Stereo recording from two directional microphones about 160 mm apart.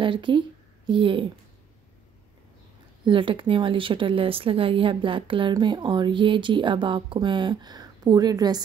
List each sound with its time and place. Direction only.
0.0 s a woman's voice: 30° right (ahead or behind)
3.0 s speech: 30° right (ahead or behind)